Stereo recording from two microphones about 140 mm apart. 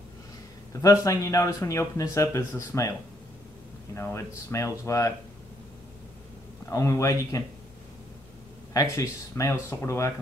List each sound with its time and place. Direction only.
0.7 s speech: 25° left (ahead or behind)
3.9 s speech: 20° left (ahead or behind)
6.7 s speech: 20° left (ahead or behind)
8.9 s speech: 20° left (ahead or behind)